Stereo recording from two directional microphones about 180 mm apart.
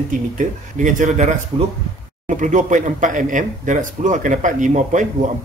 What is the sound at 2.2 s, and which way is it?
Speech, 45° right (ahead or behind).